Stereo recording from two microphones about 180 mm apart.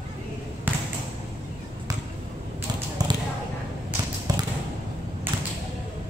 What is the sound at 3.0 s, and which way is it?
Basketball bounce, 20° right (ahead or behind).